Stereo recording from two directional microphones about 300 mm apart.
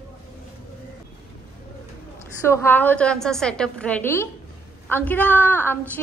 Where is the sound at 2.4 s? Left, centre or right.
Centre.